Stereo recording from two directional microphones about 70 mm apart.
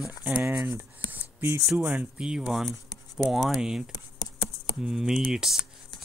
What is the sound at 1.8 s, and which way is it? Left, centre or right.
Speech, right.